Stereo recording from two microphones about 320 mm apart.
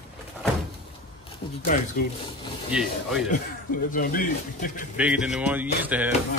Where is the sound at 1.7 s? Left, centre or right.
Left.